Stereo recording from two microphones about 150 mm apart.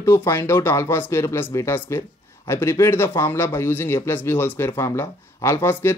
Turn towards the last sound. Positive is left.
turn(degrees=15)  # may be behind; listen again after turning